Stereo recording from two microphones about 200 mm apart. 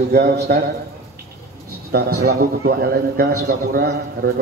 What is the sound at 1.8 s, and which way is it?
A man's voice, 50° right (ahead or behind).